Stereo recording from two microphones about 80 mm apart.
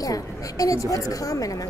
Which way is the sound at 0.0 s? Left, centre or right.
Left.